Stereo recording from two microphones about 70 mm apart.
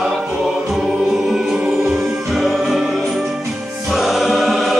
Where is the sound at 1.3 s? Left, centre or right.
Centre.